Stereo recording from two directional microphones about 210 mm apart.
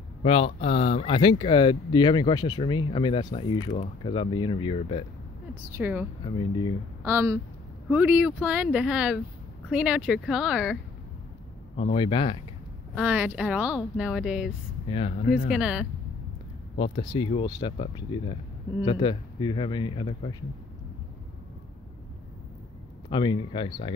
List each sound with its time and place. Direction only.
0.2 s speech: 25° left (ahead or behind)
5.5 s speech: 10° right (ahead or behind)
7.1 s speech: 10° right (ahead or behind)
11.7 s speech: 30° left (ahead or behind)
12.9 s speech: 5° right (ahead or behind)
14.9 s speech: 30° left (ahead or behind)
15.5 s speech: 5° right (ahead or behind)
16.7 s speech: 25° left (ahead or behind)
23.0 s speech: 20° left (ahead or behind)